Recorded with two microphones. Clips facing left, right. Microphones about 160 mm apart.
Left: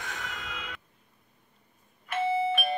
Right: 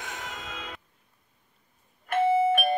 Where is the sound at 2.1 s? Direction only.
50° right (ahead or behind).